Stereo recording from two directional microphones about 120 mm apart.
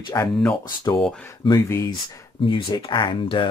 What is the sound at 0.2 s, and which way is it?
Speech, 15° left (ahead or behind).